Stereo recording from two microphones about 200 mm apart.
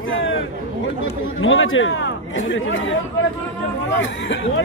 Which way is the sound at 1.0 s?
80° left.